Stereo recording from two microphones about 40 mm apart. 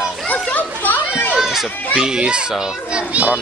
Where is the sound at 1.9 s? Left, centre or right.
Right.